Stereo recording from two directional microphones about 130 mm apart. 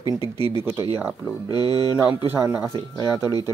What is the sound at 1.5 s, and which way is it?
Speech, 30° left (ahead or behind).